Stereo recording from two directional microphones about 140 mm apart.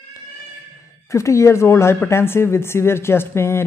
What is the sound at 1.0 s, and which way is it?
Speech, 20° left (ahead or behind).